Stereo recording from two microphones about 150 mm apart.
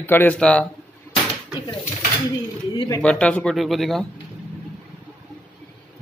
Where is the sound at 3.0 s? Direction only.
5° left (ahead or behind).